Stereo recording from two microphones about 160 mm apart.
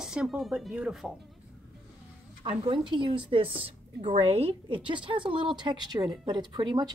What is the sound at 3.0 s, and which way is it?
A woman's voice, 35° right (ahead or behind).